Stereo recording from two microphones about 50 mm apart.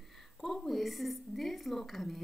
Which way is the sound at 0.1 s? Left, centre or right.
Centre.